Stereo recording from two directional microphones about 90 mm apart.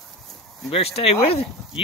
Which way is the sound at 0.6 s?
90° left.